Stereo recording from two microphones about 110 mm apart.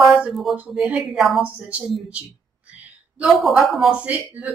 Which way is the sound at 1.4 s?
10° right (ahead or behind).